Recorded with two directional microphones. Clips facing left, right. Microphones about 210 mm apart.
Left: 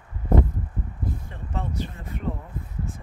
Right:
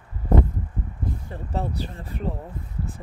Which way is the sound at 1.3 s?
35° right (ahead or behind).